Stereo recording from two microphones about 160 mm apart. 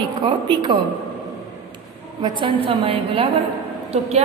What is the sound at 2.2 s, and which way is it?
A woman's voice, 30° right (ahead or behind).